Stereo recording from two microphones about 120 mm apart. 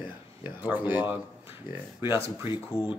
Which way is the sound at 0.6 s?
15° right (ahead or behind).